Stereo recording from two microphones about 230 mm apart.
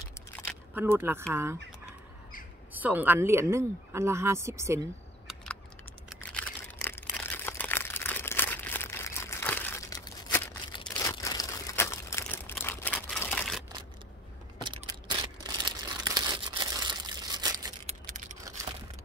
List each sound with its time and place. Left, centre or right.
0.7 s speech: centre
2.7 s speech: centre
5.3 s computer keyboard: centre
6.0 s a sound: centre
10.9 s crumpling: centre
14.6 s crumpling: centre
18.0 s a sound: right